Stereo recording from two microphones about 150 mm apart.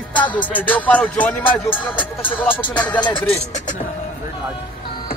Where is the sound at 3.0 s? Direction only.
30° left (ahead or behind).